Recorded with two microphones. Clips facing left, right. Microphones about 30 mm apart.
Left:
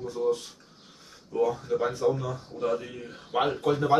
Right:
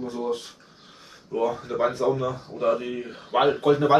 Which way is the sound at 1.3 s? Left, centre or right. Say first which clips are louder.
Right 1 dB; right.